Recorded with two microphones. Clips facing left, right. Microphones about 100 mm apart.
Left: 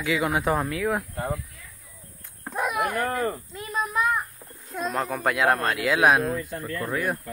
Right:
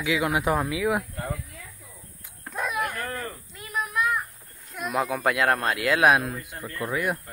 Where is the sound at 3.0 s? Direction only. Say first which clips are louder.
Left 7 dB; 40° left (ahead or behind).